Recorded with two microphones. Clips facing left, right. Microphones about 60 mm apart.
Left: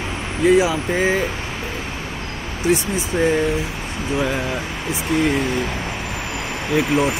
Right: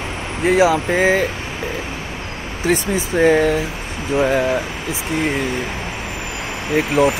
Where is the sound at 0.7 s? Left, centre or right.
Right.